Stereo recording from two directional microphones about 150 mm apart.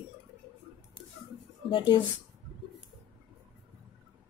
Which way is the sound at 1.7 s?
35° left (ahead or behind).